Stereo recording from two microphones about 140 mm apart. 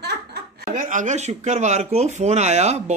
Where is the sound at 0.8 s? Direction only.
70° right (ahead or behind).